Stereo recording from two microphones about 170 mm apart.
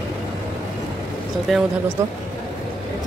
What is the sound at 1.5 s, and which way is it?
Speech, centre (ahead or behind).